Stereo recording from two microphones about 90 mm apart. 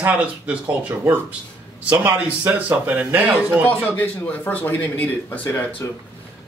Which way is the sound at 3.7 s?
15° left (ahead or behind).